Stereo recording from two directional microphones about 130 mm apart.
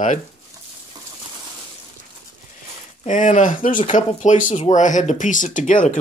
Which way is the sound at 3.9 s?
75° left (ahead or behind).